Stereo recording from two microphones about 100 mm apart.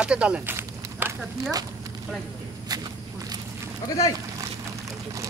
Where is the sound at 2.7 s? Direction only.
40° right (ahead or behind).